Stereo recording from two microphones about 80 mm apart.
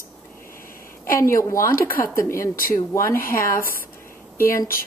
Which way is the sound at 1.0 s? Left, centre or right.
Left.